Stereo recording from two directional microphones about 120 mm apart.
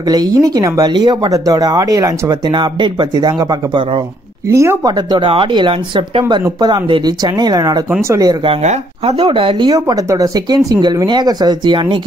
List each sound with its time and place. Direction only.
0.0 s speech: 35° right (ahead or behind)
4.5 s speech: 20° right (ahead or behind)
4.8 s speech: 40° right (ahead or behind)
9.2 s speech: 45° right (ahead or behind)
9.8 s speech: 30° right (ahead or behind)